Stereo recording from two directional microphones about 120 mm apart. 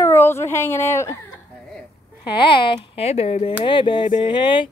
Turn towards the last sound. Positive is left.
turn(degrees=45)  # may be behind; listen again after turning